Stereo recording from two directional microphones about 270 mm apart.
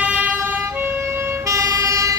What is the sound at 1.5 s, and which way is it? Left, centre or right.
Emergency vehicle, centre.